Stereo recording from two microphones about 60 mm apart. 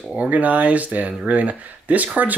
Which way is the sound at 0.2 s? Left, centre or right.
Right.